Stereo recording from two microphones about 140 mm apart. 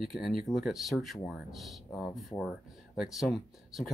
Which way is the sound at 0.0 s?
Centre (ahead or behind).